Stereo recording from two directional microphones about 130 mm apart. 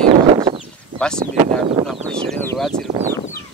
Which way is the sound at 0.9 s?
5° left (ahead or behind).